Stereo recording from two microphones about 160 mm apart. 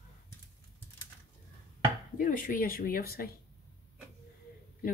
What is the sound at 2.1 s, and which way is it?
Speech, 60° left (ahead or behind).